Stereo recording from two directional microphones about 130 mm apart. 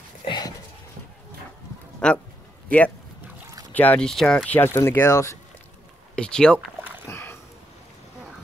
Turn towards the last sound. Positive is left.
turn(degrees=20)  # may be behind; listen again after turning